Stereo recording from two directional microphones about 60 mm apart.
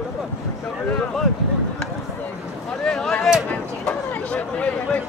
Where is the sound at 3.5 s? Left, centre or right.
Left.